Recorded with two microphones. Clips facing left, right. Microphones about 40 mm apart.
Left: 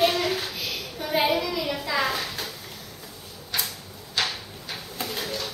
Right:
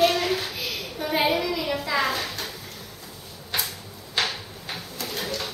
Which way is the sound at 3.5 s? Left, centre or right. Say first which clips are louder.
Right 1 dB; right.